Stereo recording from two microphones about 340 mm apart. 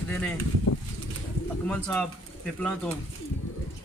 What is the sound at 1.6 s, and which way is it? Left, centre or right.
Speech, centre.